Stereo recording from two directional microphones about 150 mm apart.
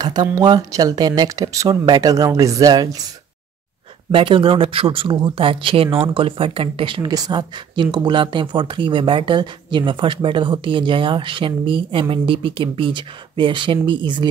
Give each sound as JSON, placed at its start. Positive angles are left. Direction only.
{"t": 0.0, "sound": "speech", "side_deg": -30}
{"t": 4.1, "sound": "speech", "side_deg": -35}